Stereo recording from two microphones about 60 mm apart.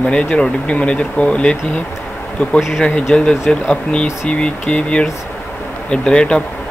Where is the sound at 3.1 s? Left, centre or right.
Centre.